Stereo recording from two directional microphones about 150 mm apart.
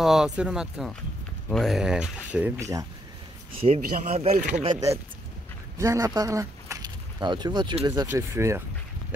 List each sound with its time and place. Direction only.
0.0 s speech: 5° right (ahead or behind)
2.6 s speech: 25° right (ahead or behind)
3.6 s speech: 45° right (ahead or behind)
4.6 s speech: 25° right (ahead or behind)